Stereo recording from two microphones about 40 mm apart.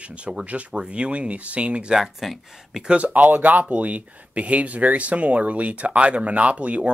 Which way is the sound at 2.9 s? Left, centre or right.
Right.